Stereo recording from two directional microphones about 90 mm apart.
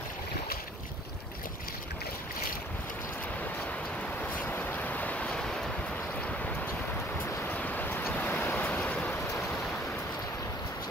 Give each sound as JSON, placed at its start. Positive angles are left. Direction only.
{"t": 4.2, "sound": "vehicle", "side_deg": 20}
{"t": 7.4, "sound": "vehicle", "side_deg": 20}